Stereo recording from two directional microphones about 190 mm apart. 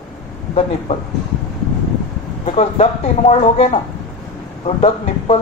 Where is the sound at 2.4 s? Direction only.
35° left (ahead or behind).